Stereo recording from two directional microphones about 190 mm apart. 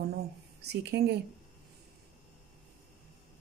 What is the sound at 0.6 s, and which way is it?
Speech, 60° right (ahead or behind).